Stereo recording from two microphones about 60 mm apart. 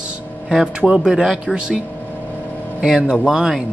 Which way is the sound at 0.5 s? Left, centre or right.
Centre.